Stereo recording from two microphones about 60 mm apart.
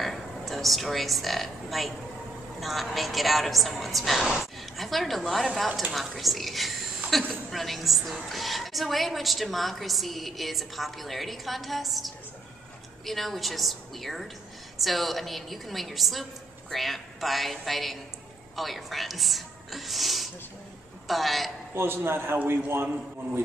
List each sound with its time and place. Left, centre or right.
0.0 s a sound: centre
2.6 s a woman's voice: centre
21.7 s a man's voice: right